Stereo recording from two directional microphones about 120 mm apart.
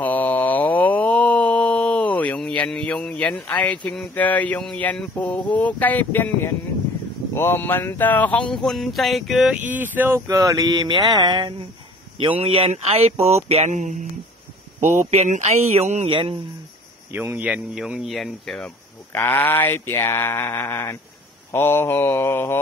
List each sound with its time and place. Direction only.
0.0 s a sound: 15° left (ahead or behind); by 9.6 s centre (ahead or behind)
9.7 s speech: 15° right (ahead or behind); by 14.0 s 90° right
15.0 s speech: 80° right; by 16.1 s 65° right (ahead or behind)
16.1 s speech: 45° right (ahead or behind)
17.1 s speech: 15° right (ahead or behind); by 18.7 s 5° left (ahead or behind)
19.1 s speech: 15° left (ahead or behind)